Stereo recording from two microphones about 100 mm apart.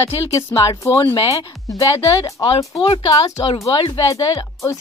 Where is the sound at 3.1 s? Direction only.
35° left (ahead or behind).